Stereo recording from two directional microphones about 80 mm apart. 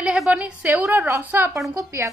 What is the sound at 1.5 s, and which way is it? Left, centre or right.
Speech, right.